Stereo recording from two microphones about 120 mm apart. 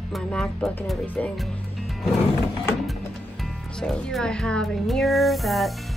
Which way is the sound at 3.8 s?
5° left (ahead or behind).